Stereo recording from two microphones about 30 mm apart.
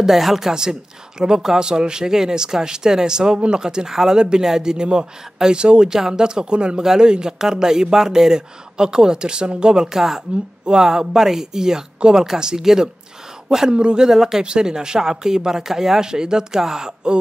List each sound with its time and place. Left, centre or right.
0.0 s speech: centre
0.5 s speech: right
5.9 s speech: centre
7.3 s a woman's voice: centre
9.8 s speech: centre
13.7 s speech: right
14.1 s speech: centre
14.4 s speech: right